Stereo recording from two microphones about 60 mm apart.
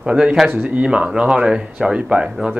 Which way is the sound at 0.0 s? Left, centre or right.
Centre.